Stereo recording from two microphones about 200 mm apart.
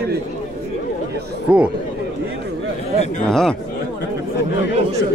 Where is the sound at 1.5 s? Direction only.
5° right (ahead or behind).